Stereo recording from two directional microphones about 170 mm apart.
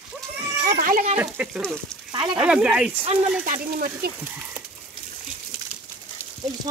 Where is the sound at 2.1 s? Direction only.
25° right (ahead or behind).